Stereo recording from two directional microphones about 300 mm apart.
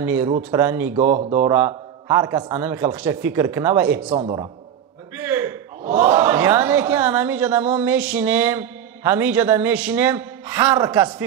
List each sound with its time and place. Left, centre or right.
0.0 s a man's voice: centre
0.9 s speech: right
1.5 s a man's voice: centre
5.1 s a sound: centre
5.9 s a woman's voice: centre